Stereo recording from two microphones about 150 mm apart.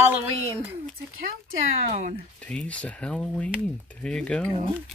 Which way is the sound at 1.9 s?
55° right (ahead or behind).